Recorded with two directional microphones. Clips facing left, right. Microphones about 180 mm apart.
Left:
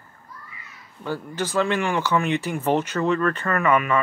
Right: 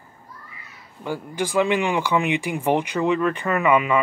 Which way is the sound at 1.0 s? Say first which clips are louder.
Right 1 dB; 15° right (ahead or behind).